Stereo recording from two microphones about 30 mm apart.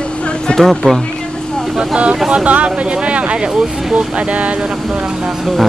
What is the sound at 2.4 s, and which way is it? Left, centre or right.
Speech, right.